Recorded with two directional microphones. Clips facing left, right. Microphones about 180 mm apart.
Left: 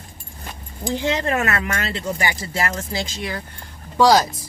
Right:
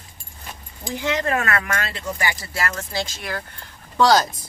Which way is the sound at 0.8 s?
30° left (ahead or behind).